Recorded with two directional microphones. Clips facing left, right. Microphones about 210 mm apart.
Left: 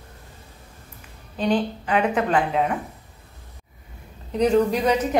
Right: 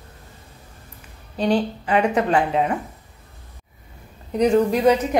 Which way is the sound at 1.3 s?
40° right (ahead or behind).